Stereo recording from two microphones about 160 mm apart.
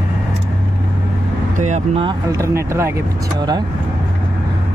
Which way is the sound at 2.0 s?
20° right (ahead or behind).